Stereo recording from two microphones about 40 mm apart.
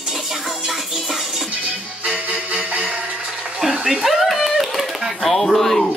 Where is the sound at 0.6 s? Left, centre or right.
Centre.